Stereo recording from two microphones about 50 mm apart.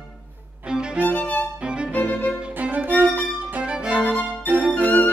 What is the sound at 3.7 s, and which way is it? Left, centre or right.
Music, right.